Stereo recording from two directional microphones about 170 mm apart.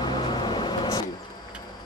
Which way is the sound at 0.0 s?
25° left (ahead or behind).